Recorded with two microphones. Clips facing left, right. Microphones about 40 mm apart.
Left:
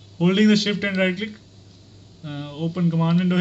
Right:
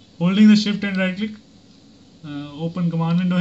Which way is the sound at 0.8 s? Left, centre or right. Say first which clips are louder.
Left 1 dB; centre.